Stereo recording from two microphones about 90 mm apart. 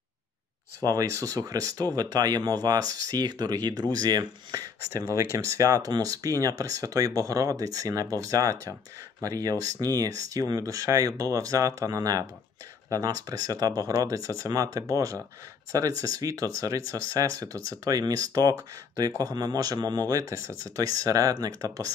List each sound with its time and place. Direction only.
0.7 s speech: 40° right (ahead or behind)
5.1 s speech: 35° right (ahead or behind)